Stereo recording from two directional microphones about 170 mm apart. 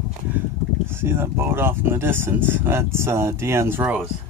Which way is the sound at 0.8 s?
15° right (ahead or behind).